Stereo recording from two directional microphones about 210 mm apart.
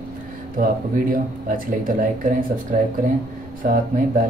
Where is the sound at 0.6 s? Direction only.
40° right (ahead or behind).